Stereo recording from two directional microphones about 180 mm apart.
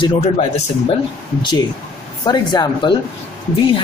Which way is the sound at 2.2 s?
25° left (ahead or behind).